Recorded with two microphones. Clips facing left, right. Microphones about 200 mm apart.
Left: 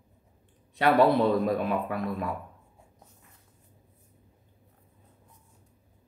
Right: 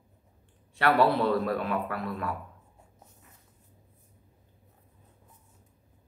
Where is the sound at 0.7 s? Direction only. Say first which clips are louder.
Left 2 dB; 20° left (ahead or behind).